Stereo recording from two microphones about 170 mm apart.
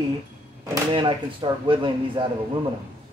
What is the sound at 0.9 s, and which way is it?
Speech, 30° right (ahead or behind).